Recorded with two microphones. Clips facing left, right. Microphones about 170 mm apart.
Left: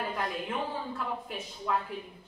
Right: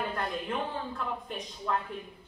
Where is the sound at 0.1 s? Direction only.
5° left (ahead or behind).